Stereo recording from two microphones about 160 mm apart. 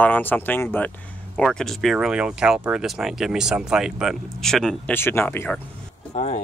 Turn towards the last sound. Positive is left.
turn(degrees=45)  # may be behind; listen again after turning